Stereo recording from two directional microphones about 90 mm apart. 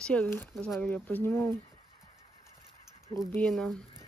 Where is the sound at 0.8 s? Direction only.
20° left (ahead or behind).